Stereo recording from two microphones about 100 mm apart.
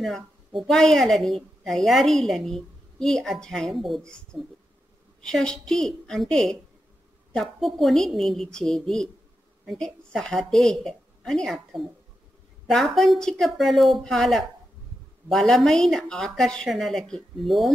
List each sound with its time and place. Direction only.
0.6 s a woman's voice: 5° left (ahead or behind)